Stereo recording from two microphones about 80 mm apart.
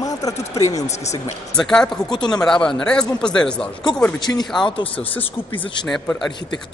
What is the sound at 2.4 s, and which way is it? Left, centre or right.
Speech, centre.